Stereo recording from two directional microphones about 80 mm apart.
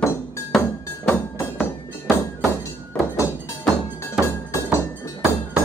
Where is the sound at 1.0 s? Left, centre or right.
Left.